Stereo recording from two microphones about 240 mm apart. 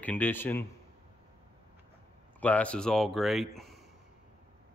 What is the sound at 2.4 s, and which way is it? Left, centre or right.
Speech, centre.